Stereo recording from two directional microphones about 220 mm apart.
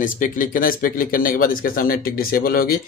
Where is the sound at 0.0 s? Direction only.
40° left (ahead or behind).